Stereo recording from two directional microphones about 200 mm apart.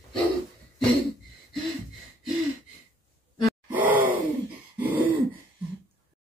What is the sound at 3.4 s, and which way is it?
Gasp, 10° right (ahead or behind).